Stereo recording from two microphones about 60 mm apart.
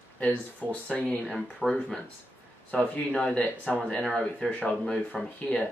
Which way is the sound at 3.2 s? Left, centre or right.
Left.